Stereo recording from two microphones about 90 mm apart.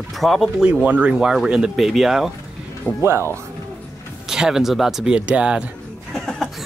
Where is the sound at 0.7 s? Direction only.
15° right (ahead or behind).